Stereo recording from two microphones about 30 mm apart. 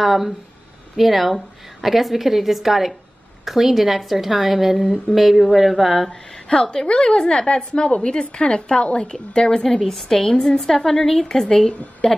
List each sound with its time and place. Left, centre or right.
0.0 s a woman's voice: centre
6.0 s a woman's voice: left